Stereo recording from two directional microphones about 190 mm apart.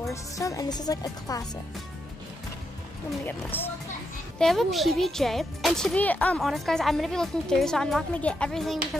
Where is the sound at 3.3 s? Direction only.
10° left (ahead or behind).